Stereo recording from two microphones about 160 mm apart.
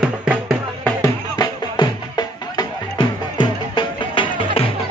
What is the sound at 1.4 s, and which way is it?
Music, 25° left (ahead or behind).